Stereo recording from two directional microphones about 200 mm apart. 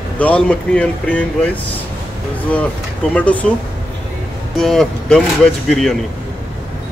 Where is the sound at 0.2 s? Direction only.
5° left (ahead or behind).